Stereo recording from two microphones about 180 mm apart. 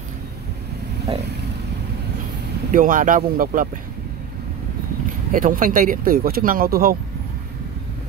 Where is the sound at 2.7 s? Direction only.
50° right (ahead or behind).